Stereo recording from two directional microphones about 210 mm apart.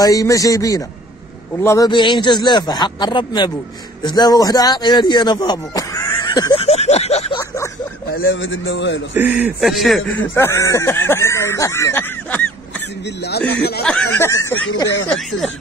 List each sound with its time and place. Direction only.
0.0 s a man's voice: 15° left (ahead or behind)
7.3 s a sound: 15° left (ahead or behind)
8.2 s a man's voice: 70° left (ahead or behind)
9.1 s a man's voice: 10° right (ahead or behind)
10.3 s speech: 10° left (ahead or behind)
13.0 s speech: 50° left (ahead or behind)
13.8 s speech: 10° left (ahead or behind)
15.0 s a man's voice: centre (ahead or behind)